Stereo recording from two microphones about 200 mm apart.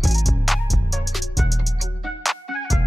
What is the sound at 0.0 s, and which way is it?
Music, centre (ahead or behind).